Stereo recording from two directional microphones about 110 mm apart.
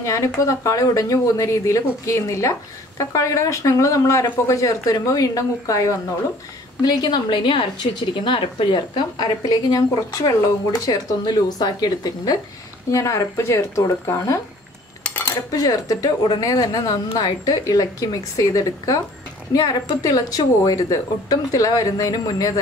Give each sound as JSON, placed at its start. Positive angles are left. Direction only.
{"t": 0.0, "sound": "a woman's voice", "side_deg": 30}
{"t": 15.0, "sound": "cutlery", "side_deg": 15}
{"t": 15.5, "sound": "a woman's voice", "side_deg": 30}